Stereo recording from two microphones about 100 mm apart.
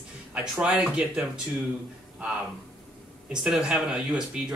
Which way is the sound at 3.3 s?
10° right (ahead or behind).